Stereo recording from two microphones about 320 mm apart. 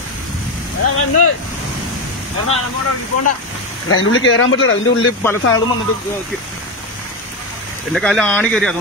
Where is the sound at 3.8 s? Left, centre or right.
Left.